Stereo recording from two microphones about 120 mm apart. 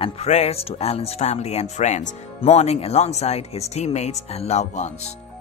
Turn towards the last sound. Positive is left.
turn(degrees=70)  # may be behind; listen again after turning